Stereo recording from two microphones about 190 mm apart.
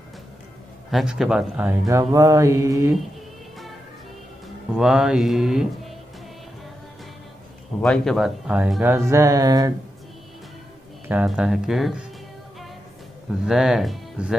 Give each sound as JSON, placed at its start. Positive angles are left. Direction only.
{"t": 0.8, "sound": "speech", "side_deg": 0}
{"t": 4.7, "sound": "speech", "side_deg": -5}
{"t": 7.8, "sound": "speech", "side_deg": 0}
{"t": 8.9, "sound": "speech", "side_deg": -15}
{"t": 11.1, "sound": "speech", "side_deg": -5}
{"t": 13.5, "sound": "speech", "side_deg": 0}